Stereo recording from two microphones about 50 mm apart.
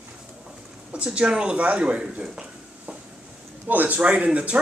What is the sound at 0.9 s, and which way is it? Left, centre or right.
Speech, right.